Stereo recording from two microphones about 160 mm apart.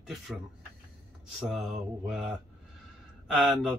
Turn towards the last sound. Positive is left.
turn(degrees=0)  # may be behind; listen again after turning